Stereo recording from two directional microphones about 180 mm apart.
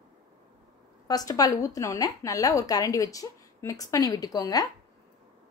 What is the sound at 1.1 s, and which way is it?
A woman's voice, 20° left (ahead or behind).